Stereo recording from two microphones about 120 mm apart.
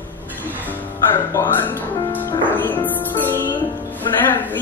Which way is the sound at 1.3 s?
15° left (ahead or behind).